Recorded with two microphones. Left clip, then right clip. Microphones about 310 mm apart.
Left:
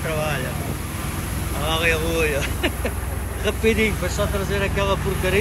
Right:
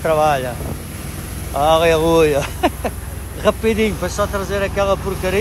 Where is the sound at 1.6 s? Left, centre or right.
Centre.